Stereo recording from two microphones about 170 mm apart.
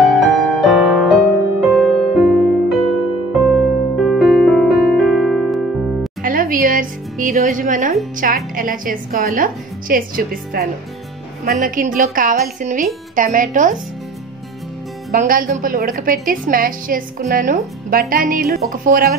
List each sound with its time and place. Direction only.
0.0 s music: centre (ahead or behind)
6.2 s music: 55° right (ahead or behind)
8.2 s a woman's voice: 55° right (ahead or behind)
15.1 s a woman's voice: 55° right (ahead or behind)